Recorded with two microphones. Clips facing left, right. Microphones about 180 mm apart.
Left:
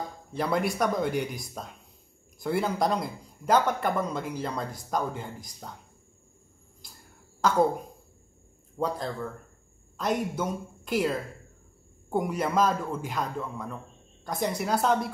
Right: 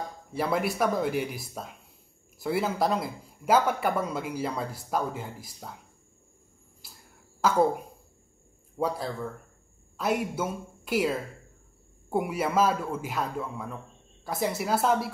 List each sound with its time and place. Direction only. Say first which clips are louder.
0.3 s speech: even; 5° right (ahead or behind)
6.8 s a sound: left 1 dB; 5° right (ahead or behind)
7.4 s a man's voice: even; 5° right (ahead or behind)